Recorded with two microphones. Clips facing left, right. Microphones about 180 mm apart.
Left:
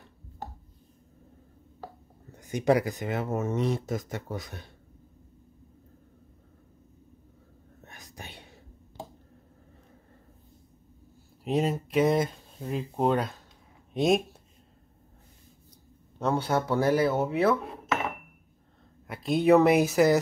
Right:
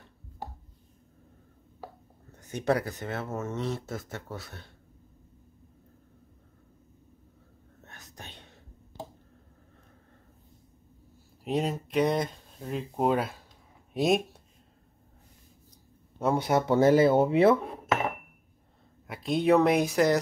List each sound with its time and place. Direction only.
2.3 s speech: 10° left (ahead or behind)
7.8 s whispering: 10° left (ahead or behind)
11.4 s speech: centre (ahead or behind)
16.2 s speech: 10° right (ahead or behind)
19.0 s speech: centre (ahead or behind)